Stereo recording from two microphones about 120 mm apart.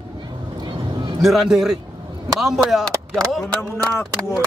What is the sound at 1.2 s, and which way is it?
Speech, centre (ahead or behind).